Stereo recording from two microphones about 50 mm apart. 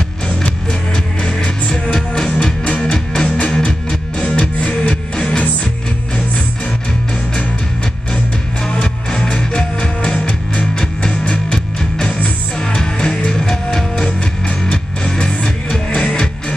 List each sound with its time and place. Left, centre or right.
0.9 s music: centre
8.8 s music: centre; by 10.7 s left
10.7 s music: centre